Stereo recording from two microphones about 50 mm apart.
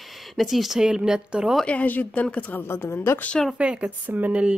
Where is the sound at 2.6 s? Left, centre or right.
Left.